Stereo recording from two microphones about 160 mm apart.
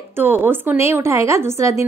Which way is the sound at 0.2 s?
15° right (ahead or behind).